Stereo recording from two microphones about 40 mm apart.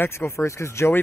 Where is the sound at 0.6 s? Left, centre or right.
Left.